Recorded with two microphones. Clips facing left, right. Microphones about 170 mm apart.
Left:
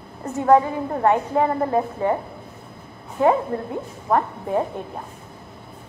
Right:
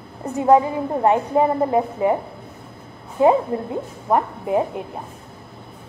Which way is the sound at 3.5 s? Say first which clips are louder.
Right 2 dB; 15° right (ahead or behind).